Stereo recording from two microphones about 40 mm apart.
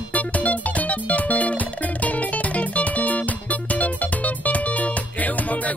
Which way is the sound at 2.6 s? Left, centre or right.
Left.